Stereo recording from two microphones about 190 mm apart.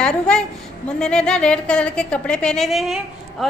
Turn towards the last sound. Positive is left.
turn(degrees=0)  # may be behind; listen again after turning